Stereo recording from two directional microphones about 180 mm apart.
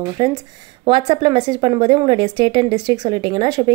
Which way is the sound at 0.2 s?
20° right (ahead or behind).